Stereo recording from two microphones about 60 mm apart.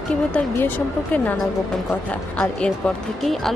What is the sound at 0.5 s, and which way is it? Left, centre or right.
Speech, left.